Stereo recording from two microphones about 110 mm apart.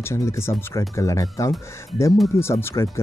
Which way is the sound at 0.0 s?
25° left (ahead or behind).